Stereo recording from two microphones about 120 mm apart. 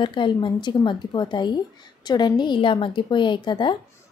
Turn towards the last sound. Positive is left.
turn(degrees=40)  # may be behind; listen again after turning